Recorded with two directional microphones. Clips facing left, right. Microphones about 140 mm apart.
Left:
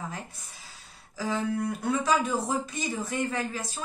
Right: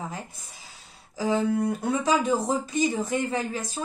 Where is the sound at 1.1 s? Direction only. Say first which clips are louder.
Right 5 dB; 25° right (ahead or behind).